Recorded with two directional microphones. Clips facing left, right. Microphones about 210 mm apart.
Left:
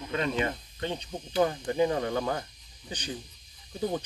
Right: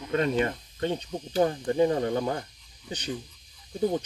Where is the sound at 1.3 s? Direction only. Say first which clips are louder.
Right 2 dB; 30° right (ahead or behind).